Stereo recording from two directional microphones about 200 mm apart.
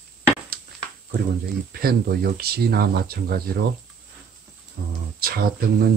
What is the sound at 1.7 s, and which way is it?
Speech, 50° right (ahead or behind).